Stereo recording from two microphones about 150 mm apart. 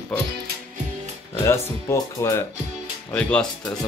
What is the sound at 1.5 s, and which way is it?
Speech, 20° left (ahead or behind).